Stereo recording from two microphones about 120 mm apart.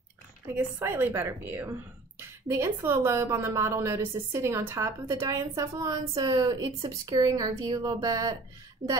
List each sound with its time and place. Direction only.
0.6 s a woman's voice: 15° right (ahead or behind)